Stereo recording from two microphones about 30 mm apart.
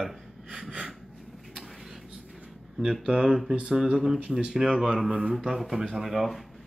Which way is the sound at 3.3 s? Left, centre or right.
Centre.